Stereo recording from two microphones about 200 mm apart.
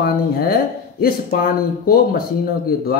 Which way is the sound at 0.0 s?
50° left (ahead or behind).